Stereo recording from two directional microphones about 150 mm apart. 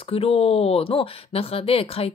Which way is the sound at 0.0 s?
40° left (ahead or behind).